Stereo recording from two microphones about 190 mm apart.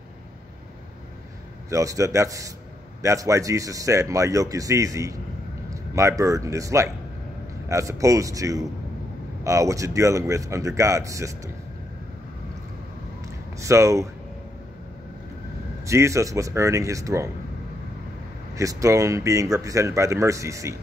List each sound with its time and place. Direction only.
1.7 s speech: 15° right (ahead or behind)
13.6 s speech: 15° right (ahead or behind)
15.8 s speech: 15° right (ahead or behind)
18.5 s speech: 15° right (ahead or behind)